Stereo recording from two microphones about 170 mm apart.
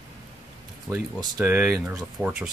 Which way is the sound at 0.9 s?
15° right (ahead or behind).